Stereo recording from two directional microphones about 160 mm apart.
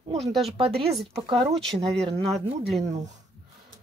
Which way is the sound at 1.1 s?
30° right (ahead or behind).